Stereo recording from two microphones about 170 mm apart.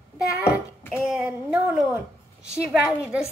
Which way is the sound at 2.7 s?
5° right (ahead or behind).